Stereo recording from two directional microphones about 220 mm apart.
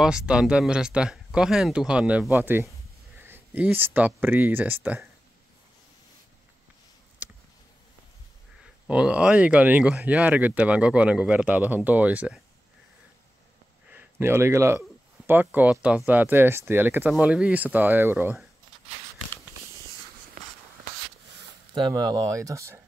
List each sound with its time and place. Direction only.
0.0 s speech: 5° right (ahead or behind)
8.8 s speech: 5° right (ahead or behind)
13.8 s speech: 10° right (ahead or behind)
20.4 s a sound: 40° right (ahead or behind)
21.7 s speech: 20° right (ahead or behind)